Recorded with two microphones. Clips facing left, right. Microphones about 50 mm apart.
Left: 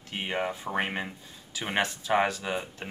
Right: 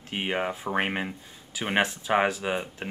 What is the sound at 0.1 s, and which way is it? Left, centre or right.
Speech, centre.